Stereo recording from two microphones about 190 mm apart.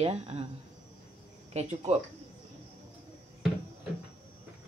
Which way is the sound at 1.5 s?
35° right (ahead or behind).